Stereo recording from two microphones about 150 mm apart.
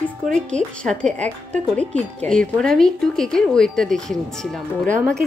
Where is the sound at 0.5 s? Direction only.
5° left (ahead or behind).